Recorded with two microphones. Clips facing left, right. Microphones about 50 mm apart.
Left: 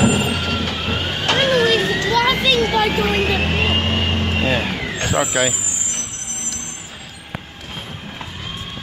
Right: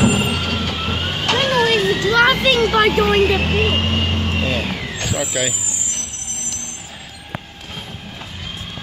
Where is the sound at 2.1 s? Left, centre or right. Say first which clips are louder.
Right 4 dB; right.